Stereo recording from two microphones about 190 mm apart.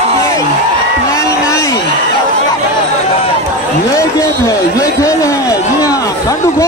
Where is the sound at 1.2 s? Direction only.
15° left (ahead or behind).